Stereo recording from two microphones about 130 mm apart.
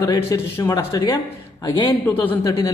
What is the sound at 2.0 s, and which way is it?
Speech, 15° left (ahead or behind).